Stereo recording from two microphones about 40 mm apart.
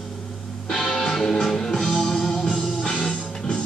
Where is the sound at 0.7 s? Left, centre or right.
Centre.